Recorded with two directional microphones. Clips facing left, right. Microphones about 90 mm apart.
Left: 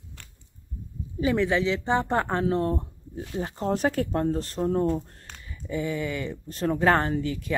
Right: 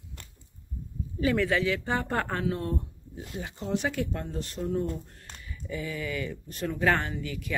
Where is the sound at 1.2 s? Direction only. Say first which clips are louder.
Left 2 dB; 20° left (ahead or behind); by 5.0 s 40° left (ahead or behind).